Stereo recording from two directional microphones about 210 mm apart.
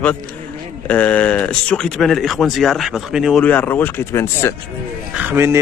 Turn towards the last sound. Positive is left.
turn(degrees=-10)  # may be behind; listen again after turning